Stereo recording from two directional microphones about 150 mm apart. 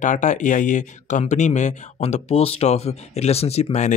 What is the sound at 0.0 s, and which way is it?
Speech, 55° left (ahead or behind).